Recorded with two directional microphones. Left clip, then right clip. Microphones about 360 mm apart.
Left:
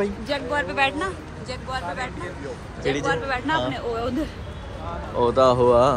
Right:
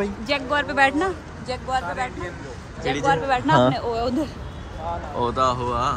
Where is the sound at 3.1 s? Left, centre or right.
Right.